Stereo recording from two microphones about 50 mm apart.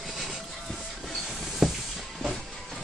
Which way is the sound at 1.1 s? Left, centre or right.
Centre.